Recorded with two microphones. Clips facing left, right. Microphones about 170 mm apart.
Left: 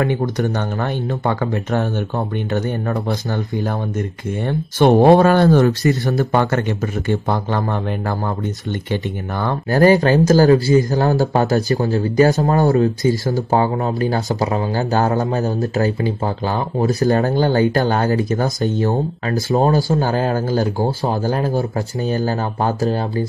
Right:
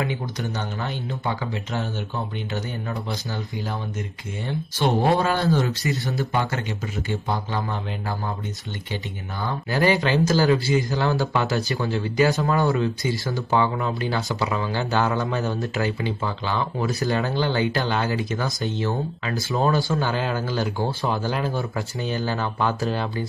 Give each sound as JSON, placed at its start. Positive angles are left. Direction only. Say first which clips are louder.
{"t": 0.0, "sound": "speech", "louder": "left 9 dB", "side_deg": 50}
{"t": 8.9, "sound": "speech", "louder": "left 8 dB", "side_deg": 60}
{"t": 9.8, "sound": "speech", "louder": "left 8 dB", "side_deg": 45}